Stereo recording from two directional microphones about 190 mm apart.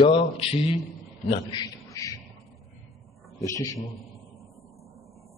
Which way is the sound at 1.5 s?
20° left (ahead or behind).